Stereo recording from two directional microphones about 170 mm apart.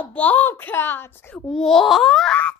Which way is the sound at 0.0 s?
10° left (ahead or behind).